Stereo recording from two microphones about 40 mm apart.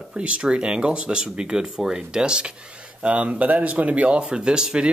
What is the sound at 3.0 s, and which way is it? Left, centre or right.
Speech, right.